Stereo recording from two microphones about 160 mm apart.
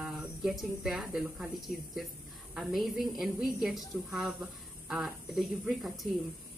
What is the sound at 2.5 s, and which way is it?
A woman's voice, centre (ahead or behind).